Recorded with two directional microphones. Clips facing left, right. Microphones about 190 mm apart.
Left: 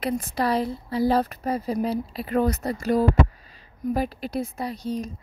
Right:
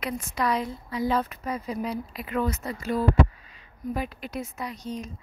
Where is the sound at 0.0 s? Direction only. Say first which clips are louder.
Left 4 dB; 35° left (ahead or behind).